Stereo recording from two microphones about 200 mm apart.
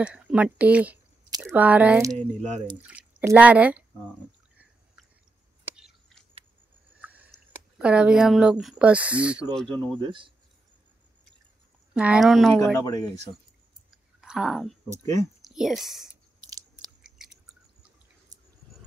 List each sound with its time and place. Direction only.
0.0 s speech: 5° right (ahead or behind)
2.1 s speech: 35° right (ahead or behind)
2.9 s speech: 10° right (ahead or behind)
5.7 s a sound: 5° right (ahead or behind)
7.8 s speech: 5° right (ahead or behind)
9.9 s speech: 25° right (ahead or behind)
11.9 s speech: 5° right (ahead or behind)
12.7 s speech: 15° left (ahead or behind)
13.8 s clicking: 5° right (ahead or behind)
15.4 s speech: centre (ahead or behind)
16.3 s biting: 20° right (ahead or behind)
16.7 s chewing: 5° right (ahead or behind)